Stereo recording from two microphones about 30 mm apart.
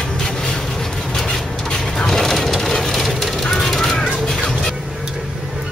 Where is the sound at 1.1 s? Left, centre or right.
Centre.